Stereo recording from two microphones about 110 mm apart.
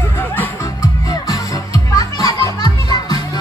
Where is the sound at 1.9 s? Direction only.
35° left (ahead or behind).